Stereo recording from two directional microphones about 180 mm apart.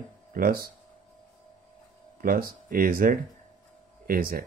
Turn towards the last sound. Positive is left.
turn(degrees=-55)  # may be behind; listen again after turning